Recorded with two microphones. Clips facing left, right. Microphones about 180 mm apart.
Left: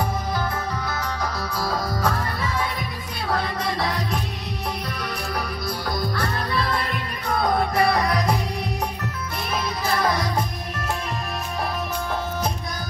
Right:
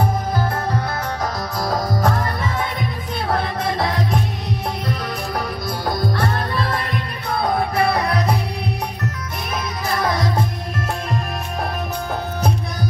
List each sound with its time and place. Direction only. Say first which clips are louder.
1.2 s music: right 3 dB; 20° right (ahead or behind)
2.0 s music: right 5 dB; 45° right (ahead or behind)
3.3 s music: right 3 dB; 25° right (ahead or behind)
5.9 s music: right 6 dB; 50° right (ahead or behind)
9.9 s music: right 3 dB; 25° right (ahead or behind)